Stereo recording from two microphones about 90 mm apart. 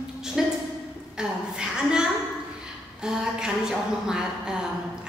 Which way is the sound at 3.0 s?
10° right (ahead or behind).